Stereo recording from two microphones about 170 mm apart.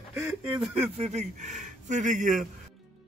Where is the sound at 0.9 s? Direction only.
40° right (ahead or behind).